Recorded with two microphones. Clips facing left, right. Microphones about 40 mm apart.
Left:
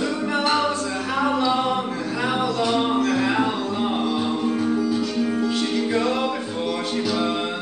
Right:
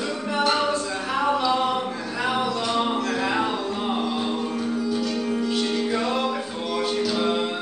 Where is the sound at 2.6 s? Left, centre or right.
Centre.